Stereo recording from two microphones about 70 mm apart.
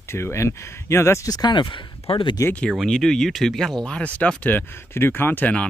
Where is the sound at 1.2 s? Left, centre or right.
Left.